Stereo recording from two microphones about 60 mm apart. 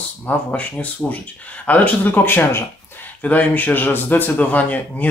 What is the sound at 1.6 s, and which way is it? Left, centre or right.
Speech, left.